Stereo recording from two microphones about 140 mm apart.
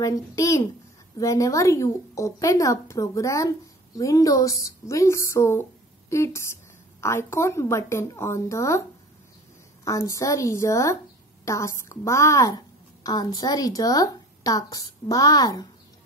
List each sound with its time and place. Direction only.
0.0 s speech: 20° left (ahead or behind)
9.8 s a woman's voice: 20° left (ahead or behind)